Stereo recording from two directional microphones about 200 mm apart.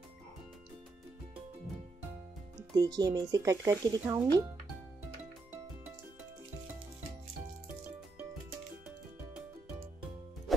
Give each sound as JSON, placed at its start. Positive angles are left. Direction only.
{"t": 2.7, "sound": "speech", "side_deg": -20}